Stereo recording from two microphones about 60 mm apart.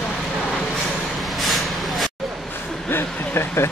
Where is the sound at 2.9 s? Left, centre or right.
Left.